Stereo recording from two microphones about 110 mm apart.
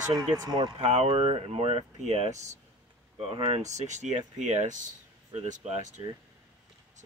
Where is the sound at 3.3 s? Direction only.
55° right (ahead or behind).